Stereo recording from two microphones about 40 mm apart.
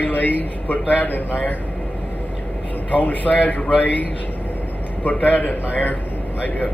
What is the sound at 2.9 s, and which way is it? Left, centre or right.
A man's voice, left.